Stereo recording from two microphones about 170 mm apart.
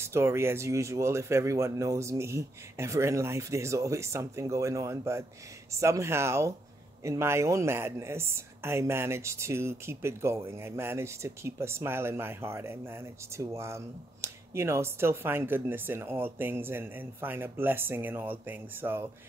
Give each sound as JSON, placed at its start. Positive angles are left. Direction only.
{"t": 0.0, "sound": "speech", "side_deg": -15}